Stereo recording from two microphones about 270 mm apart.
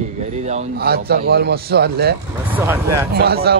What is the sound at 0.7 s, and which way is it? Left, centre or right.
Speech, right.